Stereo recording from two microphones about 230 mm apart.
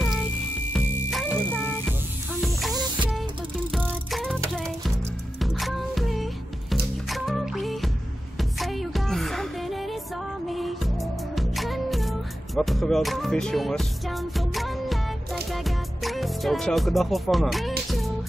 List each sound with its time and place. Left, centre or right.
0.0 s music: centre
2.7 s music: centre
3.7 s music: centre